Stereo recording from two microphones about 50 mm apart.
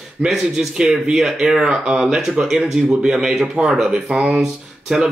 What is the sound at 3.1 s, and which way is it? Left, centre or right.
Speech, centre.